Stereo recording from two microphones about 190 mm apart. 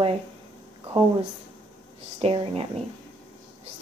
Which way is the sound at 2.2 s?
30° right (ahead or behind).